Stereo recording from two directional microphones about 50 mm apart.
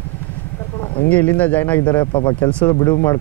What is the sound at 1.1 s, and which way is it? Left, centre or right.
Speech, left.